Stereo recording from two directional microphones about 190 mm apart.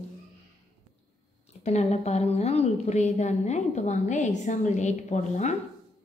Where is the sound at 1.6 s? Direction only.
35° left (ahead or behind).